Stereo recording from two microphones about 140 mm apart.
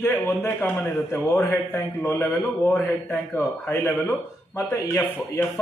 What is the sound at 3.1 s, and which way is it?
Speech, 15° left (ahead or behind).